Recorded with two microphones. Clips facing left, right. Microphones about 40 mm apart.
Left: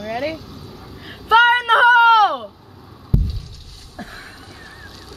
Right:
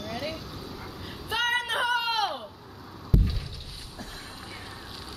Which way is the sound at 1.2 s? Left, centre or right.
Left.